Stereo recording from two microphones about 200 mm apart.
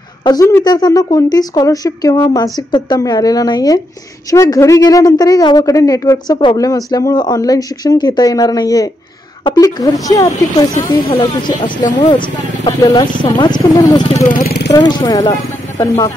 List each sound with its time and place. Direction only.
0.2 s speech: 20° left (ahead or behind)
14.3 s speech: 50° left (ahead or behind)
14.7 s speech: 20° left (ahead or behind)